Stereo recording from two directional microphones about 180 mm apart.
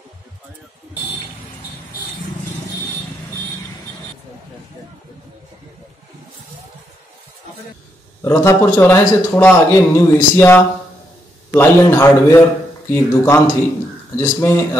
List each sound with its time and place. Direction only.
8.2 s speech: 15° left (ahead or behind)